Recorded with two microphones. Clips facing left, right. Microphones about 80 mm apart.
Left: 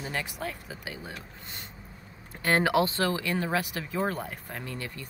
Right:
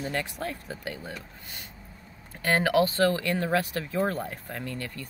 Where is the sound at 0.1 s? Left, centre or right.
Centre.